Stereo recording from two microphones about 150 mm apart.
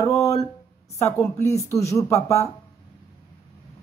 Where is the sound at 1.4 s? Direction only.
20° left (ahead or behind).